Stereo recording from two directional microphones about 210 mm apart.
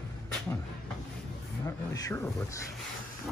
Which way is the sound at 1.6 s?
15° left (ahead or behind).